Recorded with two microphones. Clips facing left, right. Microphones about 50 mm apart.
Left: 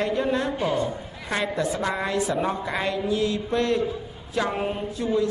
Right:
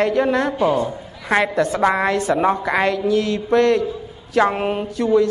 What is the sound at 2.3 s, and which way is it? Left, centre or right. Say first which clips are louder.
Speech: right 8 dB; right.